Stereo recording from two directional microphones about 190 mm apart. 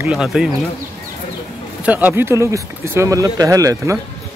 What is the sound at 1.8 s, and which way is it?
Speech, 10° right (ahead or behind).